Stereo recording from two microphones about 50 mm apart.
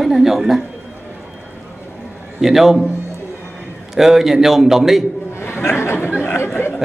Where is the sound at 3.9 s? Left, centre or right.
Centre.